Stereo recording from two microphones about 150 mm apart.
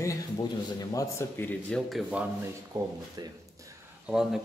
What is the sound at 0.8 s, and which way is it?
Speech, 25° left (ahead or behind).